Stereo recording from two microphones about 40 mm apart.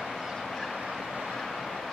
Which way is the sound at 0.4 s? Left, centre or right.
Centre.